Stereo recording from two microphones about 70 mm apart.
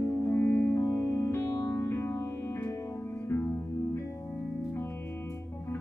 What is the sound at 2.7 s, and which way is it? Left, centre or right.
Music, left.